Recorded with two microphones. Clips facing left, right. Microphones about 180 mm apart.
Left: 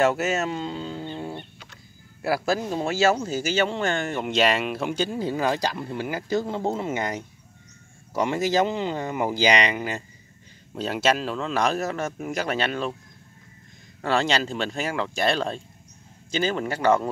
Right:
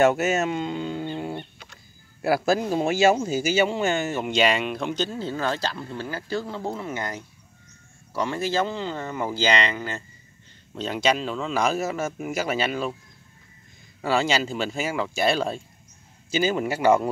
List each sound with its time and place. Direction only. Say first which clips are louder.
0.0 s a man's voice: right 2 dB; 20° right (ahead or behind); by 12.9 s 5° right (ahead or behind)
14.0 s a man's voice: even; 5° right (ahead or behind)